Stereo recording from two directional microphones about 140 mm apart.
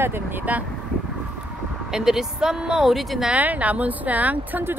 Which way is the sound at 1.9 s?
5° right (ahead or behind).